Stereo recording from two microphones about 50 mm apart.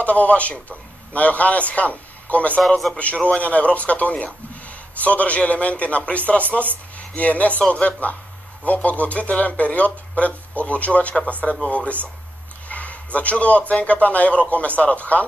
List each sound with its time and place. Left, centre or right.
0.0 s a man's voice: left